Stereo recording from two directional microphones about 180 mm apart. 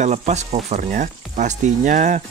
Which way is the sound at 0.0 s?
40° right (ahead or behind).